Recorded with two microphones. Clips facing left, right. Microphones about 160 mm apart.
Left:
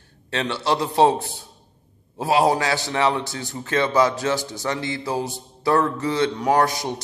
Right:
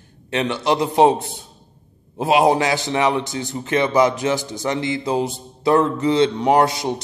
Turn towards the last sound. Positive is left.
turn(degrees=-25)  # may be behind; listen again after turning